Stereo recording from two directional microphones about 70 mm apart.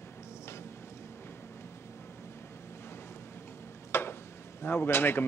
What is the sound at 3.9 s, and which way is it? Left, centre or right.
Tick-tock, left.